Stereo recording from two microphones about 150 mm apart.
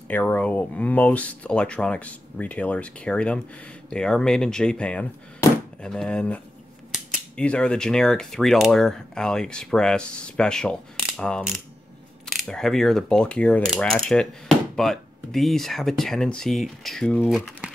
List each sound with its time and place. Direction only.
0.1 s speech: 10° left (ahead or behind)
5.4 s chopping: 20° left (ahead or behind)
5.8 s speech: 5° left (ahead or behind)